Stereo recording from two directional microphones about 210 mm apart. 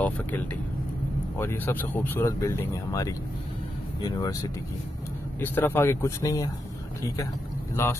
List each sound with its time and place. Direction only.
1.4 s speech: 10° left (ahead or behind)
7.7 s speech: 15° left (ahead or behind)